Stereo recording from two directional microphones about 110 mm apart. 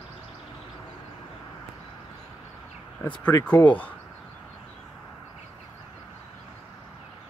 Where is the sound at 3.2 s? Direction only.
15° left (ahead or behind).